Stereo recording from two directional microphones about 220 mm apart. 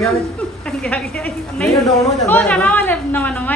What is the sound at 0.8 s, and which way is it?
A woman's voice, 5° left (ahead or behind).